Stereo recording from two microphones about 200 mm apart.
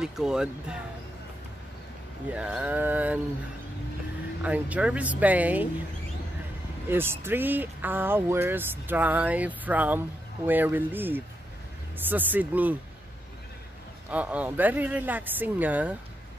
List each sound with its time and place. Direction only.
0.0 s speech: 5° right (ahead or behind)
2.3 s speech: 5° right (ahead or behind)
4.4 s speech: 5° right (ahead or behind)
6.9 s speech: 10° right (ahead or behind)
14.1 s speech: 5° right (ahead or behind)